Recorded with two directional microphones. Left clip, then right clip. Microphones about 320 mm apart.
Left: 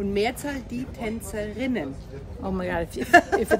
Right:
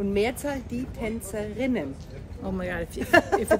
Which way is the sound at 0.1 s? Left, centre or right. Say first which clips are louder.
Even; centre.